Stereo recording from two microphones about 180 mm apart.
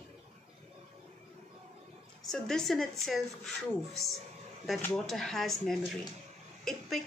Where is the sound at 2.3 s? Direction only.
Centre (ahead or behind).